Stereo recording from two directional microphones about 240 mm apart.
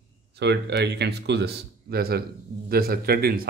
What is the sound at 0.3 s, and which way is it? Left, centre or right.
Speech, right.